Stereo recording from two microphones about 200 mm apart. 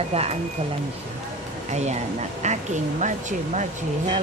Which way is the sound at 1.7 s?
35° right (ahead or behind).